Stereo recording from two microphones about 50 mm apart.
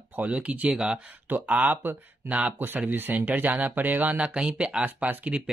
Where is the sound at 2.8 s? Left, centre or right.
Right.